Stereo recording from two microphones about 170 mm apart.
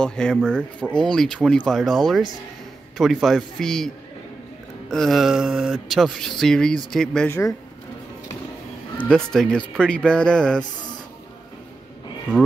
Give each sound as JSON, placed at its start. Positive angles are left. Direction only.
{"t": 0.0, "sound": "speech", "side_deg": 5}
{"t": 7.2, "sound": "speech", "side_deg": 15}
{"t": 8.9, "sound": "speech", "side_deg": 5}